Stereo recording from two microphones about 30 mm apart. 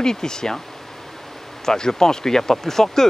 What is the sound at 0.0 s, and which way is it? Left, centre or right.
Speech, left.